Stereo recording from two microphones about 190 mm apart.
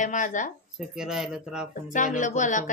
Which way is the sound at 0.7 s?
Centre (ahead or behind).